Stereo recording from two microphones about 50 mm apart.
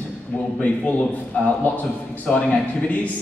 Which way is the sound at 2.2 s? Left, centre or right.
Left.